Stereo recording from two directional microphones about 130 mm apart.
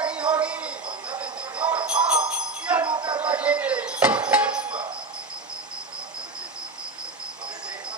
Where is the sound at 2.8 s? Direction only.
40° right (ahead or behind).